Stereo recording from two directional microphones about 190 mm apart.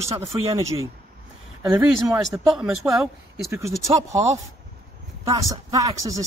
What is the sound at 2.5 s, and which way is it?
A woman's voice, 5° right (ahead or behind).